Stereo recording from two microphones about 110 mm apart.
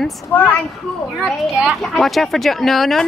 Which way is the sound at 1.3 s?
5° right (ahead or behind).